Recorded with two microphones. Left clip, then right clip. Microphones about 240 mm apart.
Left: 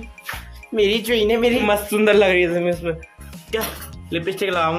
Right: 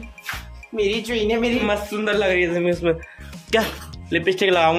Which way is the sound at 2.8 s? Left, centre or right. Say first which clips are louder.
Right 4 dB; right.